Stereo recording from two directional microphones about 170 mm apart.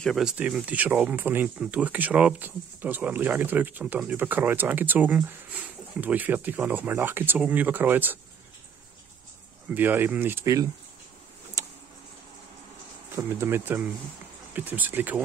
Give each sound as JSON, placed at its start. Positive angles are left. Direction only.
{"t": 0.0, "sound": "speech", "side_deg": 0}
{"t": 9.8, "sound": "speech", "side_deg": -10}
{"t": 11.6, "sound": "vehicle", "side_deg": -20}
{"t": 13.1, "sound": "speech", "side_deg": -15}